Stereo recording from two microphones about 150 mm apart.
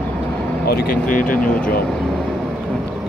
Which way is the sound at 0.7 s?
80° left.